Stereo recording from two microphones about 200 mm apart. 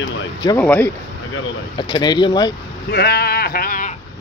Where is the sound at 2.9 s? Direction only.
55° left (ahead or behind).